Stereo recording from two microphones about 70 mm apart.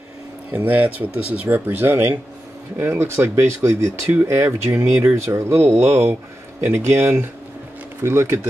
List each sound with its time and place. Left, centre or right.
0.7 s speech: right
4.1 s speech: right
4.4 s speech: right